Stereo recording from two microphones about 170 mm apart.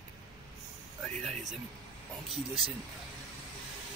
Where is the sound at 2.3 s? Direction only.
35° right (ahead or behind).